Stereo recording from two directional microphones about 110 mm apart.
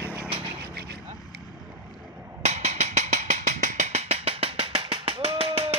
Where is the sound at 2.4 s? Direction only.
90° right.